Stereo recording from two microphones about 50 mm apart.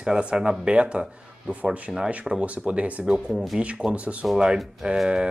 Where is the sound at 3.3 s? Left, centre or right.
Centre.